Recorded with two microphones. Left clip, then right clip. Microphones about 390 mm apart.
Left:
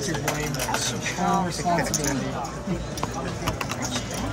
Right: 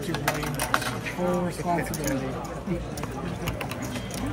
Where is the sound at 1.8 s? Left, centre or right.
Centre.